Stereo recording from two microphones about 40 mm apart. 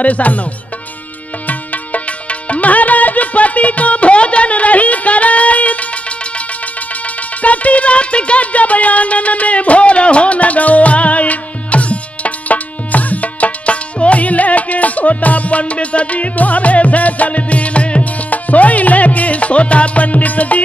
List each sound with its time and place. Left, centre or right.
0.0 s music: left
1.5 s music: left
7.4 s music: left